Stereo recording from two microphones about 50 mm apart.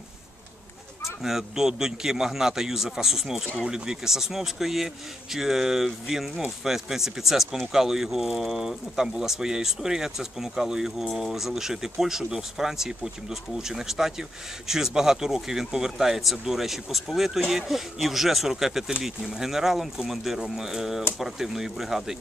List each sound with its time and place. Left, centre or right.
1.2 s speech: centre